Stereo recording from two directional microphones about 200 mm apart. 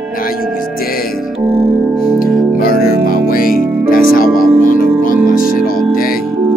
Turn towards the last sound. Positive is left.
turn(degrees=45)  # may be behind; listen again after turning